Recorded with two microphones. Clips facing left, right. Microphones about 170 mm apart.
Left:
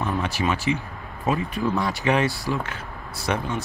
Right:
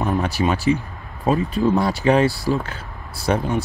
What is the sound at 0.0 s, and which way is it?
Speech, 40° right (ahead or behind).